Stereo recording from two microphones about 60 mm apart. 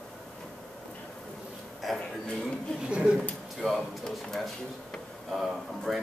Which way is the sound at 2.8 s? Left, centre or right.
Centre.